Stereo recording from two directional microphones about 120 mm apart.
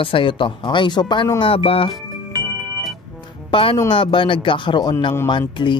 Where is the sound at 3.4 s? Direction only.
50° left (ahead or behind).